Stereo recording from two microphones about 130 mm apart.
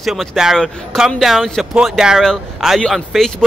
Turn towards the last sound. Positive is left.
turn(degrees=0)  # may be behind; listen again after turning